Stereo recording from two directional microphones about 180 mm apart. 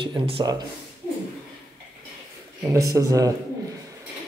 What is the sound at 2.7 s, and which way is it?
Speech, 20° right (ahead or behind).